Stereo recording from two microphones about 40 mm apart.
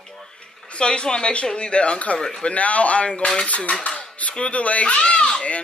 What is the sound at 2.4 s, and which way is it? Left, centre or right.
A woman's voice, left.